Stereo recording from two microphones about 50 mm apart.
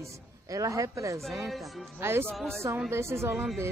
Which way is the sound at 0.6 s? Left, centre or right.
Right.